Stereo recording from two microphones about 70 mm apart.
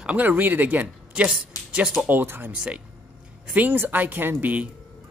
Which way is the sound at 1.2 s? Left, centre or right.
Centre.